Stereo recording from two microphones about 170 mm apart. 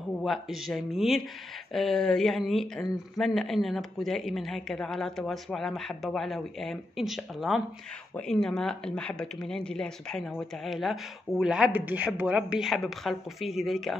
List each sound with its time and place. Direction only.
0.2 s speech: centre (ahead or behind)